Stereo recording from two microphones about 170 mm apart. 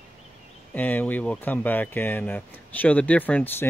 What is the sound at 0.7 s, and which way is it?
Speech, 10° left (ahead or behind).